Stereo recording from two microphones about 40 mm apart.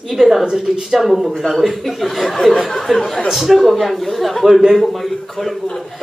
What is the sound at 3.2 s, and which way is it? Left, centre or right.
A man's voice, centre.